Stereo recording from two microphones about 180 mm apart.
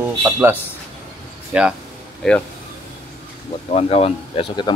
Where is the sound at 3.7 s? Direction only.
35° left (ahead or behind).